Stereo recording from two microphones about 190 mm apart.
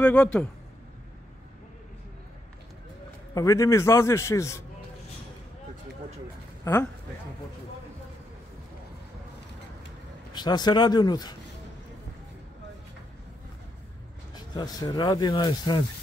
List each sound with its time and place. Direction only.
0.0 s a man's voice: 5° left (ahead or behind)
3.3 s a man's voice: 15° left (ahead or behind)
6.6 s speech: 15° left (ahead or behind)
10.3 s speech: 20° left (ahead or behind)
14.3 s speech: 20° left (ahead or behind)